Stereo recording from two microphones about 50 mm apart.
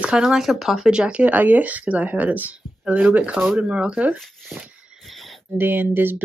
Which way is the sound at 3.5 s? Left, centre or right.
Centre.